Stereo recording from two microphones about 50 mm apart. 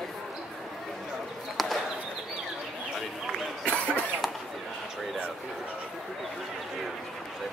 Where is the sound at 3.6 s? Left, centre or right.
Left.